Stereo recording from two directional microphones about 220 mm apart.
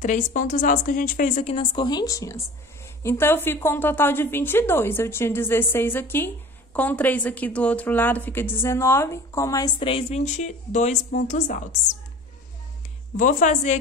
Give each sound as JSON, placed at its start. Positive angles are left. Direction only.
{"t": 0.0, "sound": "a woman's voice", "side_deg": 35}
{"t": 13.2, "sound": "a woman's voice", "side_deg": 35}